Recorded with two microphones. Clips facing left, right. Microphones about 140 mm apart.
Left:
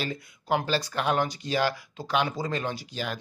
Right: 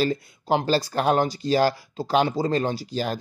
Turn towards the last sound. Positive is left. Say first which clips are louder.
# right 6 dB
turn(degrees=-35)  # may be behind; listen again after turning